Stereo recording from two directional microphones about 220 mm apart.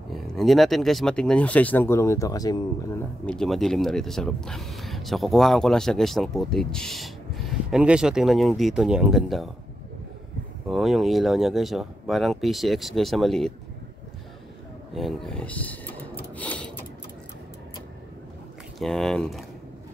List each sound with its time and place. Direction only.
0.1 s speech: centre (ahead or behind); by 3.0 s 15° left (ahead or behind)
3.3 s speech: centre (ahead or behind)
10.7 s speech: centre (ahead or behind)
15.0 s a sound: centre (ahead or behind)
18.8 s speech: centre (ahead or behind)